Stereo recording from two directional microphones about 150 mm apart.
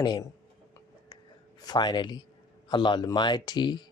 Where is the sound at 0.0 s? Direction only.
25° left (ahead or behind).